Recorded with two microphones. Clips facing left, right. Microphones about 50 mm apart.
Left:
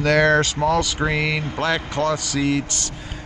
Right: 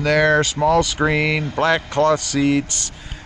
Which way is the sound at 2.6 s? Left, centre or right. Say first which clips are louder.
Left 1 dB; right.